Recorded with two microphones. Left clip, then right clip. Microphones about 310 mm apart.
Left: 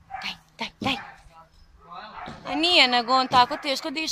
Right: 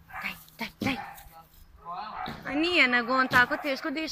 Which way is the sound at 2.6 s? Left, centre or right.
Centre.